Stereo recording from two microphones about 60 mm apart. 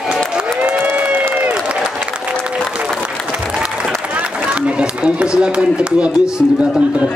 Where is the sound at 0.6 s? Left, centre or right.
Right.